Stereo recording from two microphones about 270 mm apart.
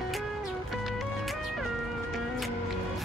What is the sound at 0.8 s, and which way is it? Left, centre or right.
Music, centre.